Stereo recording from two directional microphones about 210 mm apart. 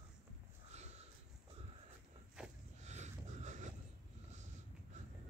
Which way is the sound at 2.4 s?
5° right (ahead or behind).